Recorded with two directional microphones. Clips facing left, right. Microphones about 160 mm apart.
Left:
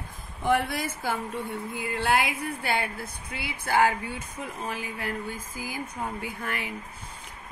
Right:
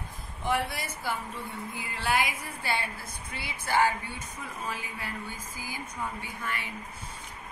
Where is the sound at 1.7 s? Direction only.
65° left (ahead or behind).